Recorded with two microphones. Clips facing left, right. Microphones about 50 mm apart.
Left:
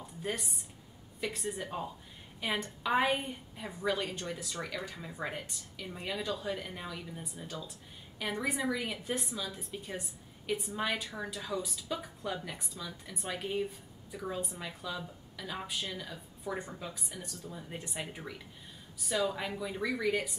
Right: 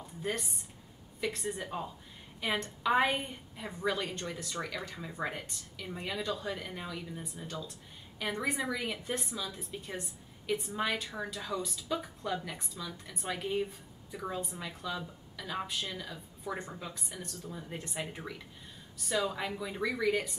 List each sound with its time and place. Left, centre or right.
0.0 s a woman's voice: centre